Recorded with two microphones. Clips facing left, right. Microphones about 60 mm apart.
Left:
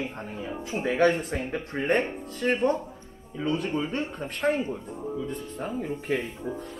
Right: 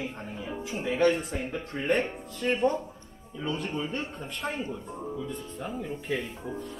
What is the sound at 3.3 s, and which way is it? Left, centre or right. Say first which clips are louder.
Speech: left 4 dB; left.